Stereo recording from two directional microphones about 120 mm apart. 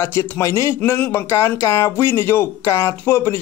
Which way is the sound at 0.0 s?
20° left (ahead or behind).